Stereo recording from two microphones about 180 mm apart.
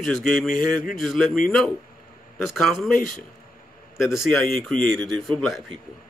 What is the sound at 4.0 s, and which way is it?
Speech, centre (ahead or behind).